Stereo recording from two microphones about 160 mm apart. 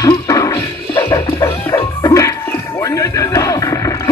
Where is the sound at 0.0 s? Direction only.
20° left (ahead or behind).